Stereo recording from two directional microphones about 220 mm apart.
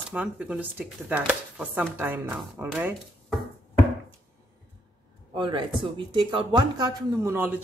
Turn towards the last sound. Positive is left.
turn(degrees=-10)  # may be behind; listen again after turning